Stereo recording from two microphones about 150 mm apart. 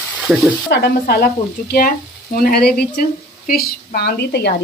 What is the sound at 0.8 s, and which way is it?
Speech, 90° left.